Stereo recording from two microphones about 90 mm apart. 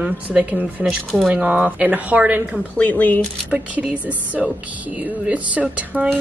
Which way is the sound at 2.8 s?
20° left (ahead or behind).